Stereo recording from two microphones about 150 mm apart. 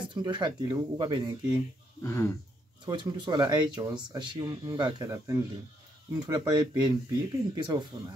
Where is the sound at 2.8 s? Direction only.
30° right (ahead or behind).